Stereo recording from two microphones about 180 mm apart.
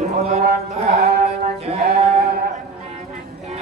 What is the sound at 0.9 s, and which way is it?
Music, 60° right (ahead or behind).